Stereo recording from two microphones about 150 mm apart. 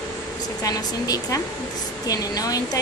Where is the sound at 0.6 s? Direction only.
25° left (ahead or behind).